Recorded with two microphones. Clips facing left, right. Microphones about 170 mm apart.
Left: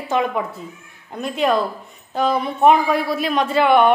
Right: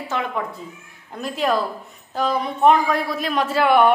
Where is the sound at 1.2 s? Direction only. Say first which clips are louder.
Left 3 dB; centre (ahead or behind).